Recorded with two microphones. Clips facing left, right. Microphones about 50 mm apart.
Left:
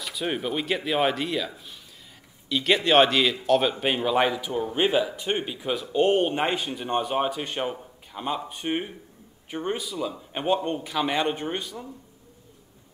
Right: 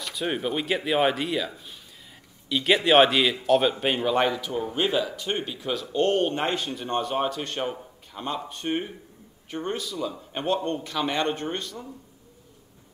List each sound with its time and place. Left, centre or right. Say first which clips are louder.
0.0 s a man's voice: right 1 dB; centre
7.7 s a sound: left 1 dB; centre
8.5 s a man's voice: even; centre